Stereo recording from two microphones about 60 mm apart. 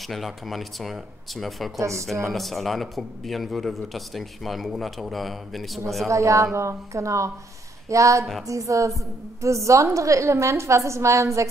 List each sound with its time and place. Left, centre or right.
0.1 s a man's voice: centre
1.8 s a woman's voice: right
2.2 s a man's voice: centre
6.0 s a woman's voice: right